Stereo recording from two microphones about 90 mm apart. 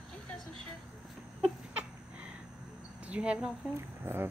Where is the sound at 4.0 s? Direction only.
25° right (ahead or behind).